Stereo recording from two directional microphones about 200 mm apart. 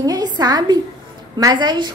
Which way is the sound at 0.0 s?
20° right (ahead or behind).